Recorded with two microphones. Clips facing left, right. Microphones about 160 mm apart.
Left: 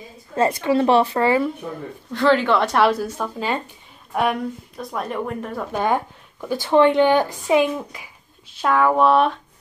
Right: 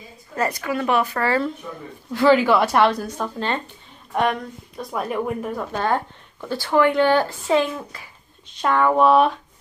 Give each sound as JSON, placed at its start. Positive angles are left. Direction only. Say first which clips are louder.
{"t": 0.4, "sound": "a woman's voice", "louder": "left 5 dB", "side_deg": 25}
{"t": 2.1, "sound": "speech", "louder": "right 2 dB", "side_deg": -5}
{"t": 5.7, "sound": "a woman's voice", "louder": "left 3 dB", "side_deg": 15}